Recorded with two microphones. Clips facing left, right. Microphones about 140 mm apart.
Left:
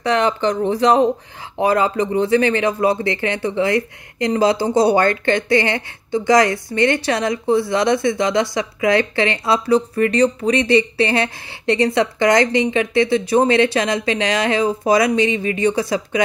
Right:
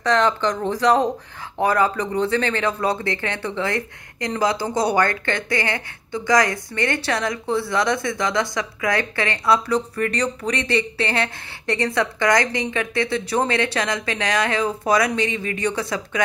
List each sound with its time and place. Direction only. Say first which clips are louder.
0.1 s speech: left 2 dB; 15° left (ahead or behind)